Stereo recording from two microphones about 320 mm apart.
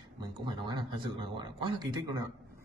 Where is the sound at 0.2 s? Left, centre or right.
Centre.